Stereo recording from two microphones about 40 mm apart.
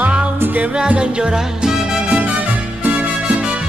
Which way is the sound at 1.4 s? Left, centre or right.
Centre.